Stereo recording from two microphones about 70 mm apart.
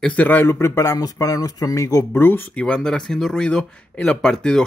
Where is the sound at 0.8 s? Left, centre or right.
Left.